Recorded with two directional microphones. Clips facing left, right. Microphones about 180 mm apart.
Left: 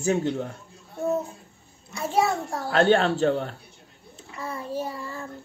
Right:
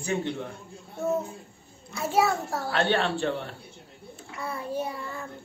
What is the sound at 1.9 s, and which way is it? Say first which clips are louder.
Child singing: left 1 dB; 5° right (ahead or behind).